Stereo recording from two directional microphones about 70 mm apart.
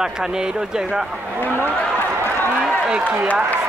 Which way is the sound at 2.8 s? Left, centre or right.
Centre.